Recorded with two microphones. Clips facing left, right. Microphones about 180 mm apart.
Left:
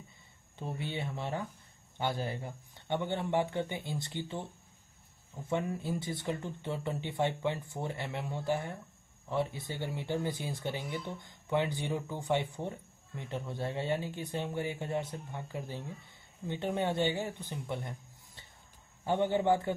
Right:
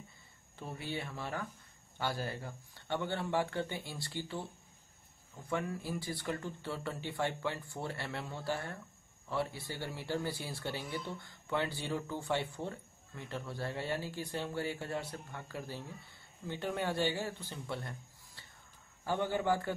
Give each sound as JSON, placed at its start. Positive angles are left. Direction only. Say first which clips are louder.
{"t": 0.6, "sound": "speech", "louder": "left 3 dB", "side_deg": 20}